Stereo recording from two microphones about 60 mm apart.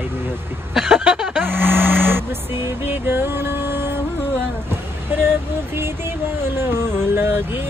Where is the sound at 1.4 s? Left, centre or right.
Right.